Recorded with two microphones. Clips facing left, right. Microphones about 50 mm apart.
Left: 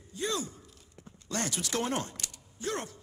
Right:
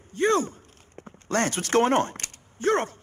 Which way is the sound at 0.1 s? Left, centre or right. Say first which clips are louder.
Right 11 dB; right.